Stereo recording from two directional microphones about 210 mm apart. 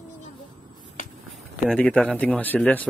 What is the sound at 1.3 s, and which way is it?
Speech, 5° left (ahead or behind).